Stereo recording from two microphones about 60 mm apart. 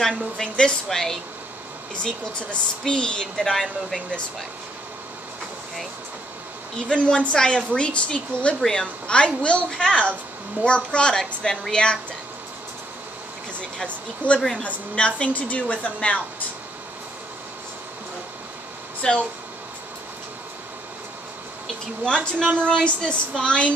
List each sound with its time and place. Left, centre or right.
0.4 s speech: centre
2.0 s speech: centre
6.9 s speech: centre
13.6 s a woman's voice: centre
19.0 s speech: centre
22.0 s speech: centre